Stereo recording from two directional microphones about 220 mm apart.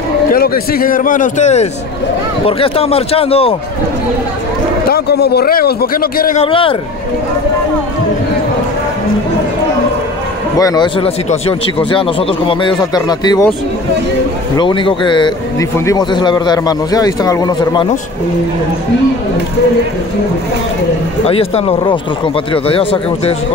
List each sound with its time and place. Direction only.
0.3 s a man's voice: 40° left (ahead or behind); by 3.5 s 25° left (ahead or behind)
4.8 s speech: 45° left (ahead or behind)
6.4 s speech: 25° left (ahead or behind)
10.6 s speech: 20° left (ahead or behind)
14.6 s a man's voice: 20° left (ahead or behind)
21.3 s speech: 25° left (ahead or behind)